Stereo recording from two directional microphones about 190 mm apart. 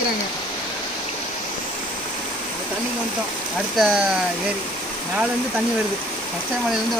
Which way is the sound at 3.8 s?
5° right (ahead or behind).